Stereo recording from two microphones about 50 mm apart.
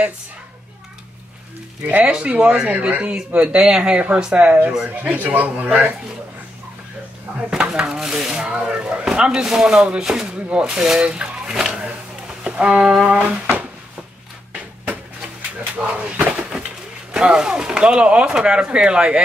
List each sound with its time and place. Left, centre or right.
1.9 s a man's voice: right
5.0 s a man's voice: right
7.3 s speech: centre
16.0 s cupboard open or close: right
17.1 s speech: centre